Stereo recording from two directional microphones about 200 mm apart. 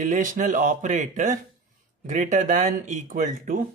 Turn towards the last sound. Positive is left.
turn(degrees=-40)  # may be behind; listen again after turning